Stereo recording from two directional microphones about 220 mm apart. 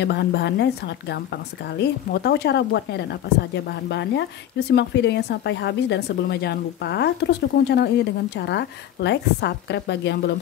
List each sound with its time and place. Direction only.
0.0 s a woman's voice: 50° left (ahead or behind)